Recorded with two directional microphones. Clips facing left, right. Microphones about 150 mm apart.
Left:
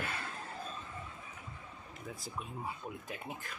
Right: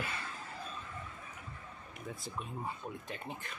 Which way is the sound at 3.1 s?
10° left (ahead or behind).